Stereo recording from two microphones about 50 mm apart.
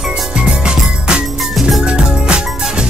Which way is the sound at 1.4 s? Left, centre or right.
Centre.